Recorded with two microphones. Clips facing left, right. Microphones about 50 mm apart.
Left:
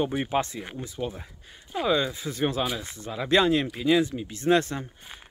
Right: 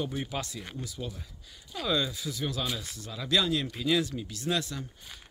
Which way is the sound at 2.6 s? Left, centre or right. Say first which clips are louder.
Left 4 dB; left.